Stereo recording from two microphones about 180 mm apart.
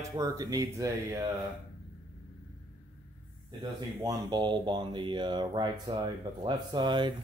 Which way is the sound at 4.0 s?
20° right (ahead or behind).